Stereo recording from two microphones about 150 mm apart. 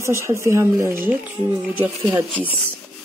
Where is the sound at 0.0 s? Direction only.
20° right (ahead or behind).